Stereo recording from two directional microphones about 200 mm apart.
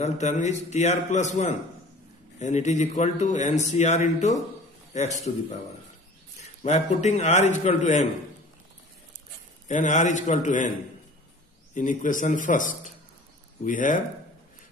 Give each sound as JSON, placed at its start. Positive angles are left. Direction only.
{"t": 0.0, "sound": "a man's voice", "side_deg": 35}
{"t": 6.6, "sound": "a man's voice", "side_deg": 35}
{"t": 9.7, "sound": "a man's voice", "side_deg": 40}
{"t": 11.7, "sound": "a man's voice", "side_deg": 40}